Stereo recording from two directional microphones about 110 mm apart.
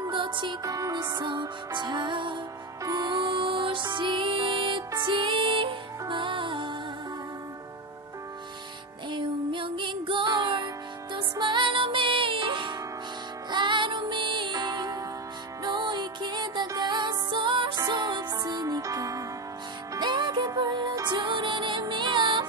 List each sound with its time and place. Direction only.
0.0 s music: 45° right (ahead or behind)
0.7 s music: 30° right (ahead or behind); by 6.8 s 50° right (ahead or behind)
9.1 s music: 50° right (ahead or behind); by 19.2 s 30° right (ahead or behind)
19.9 s music: 40° right (ahead or behind)